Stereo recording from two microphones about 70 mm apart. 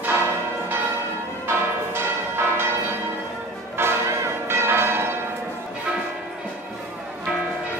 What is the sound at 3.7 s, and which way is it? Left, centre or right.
Change ringing, right.